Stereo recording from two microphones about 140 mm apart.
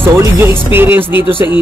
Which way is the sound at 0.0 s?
15° right (ahead or behind).